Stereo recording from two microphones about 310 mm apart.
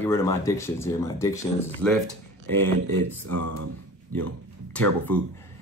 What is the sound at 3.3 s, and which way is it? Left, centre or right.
Speech, right.